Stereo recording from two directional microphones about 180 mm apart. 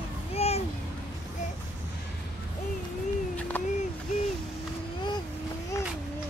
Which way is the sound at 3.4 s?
10° left (ahead or behind).